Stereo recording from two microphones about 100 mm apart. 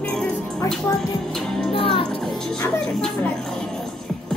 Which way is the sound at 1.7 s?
65° left (ahead or behind).